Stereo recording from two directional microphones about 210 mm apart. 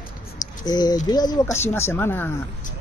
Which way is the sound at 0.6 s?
20° left (ahead or behind).